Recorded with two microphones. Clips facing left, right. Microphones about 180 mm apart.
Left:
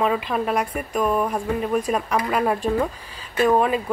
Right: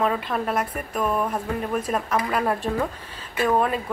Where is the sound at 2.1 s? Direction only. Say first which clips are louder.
Left 2 dB; 5° left (ahead or behind).